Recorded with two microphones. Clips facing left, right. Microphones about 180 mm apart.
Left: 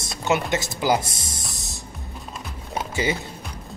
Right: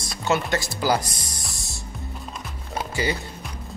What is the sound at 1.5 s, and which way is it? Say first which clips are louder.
Music: left 1 dB; 20° left (ahead or behind).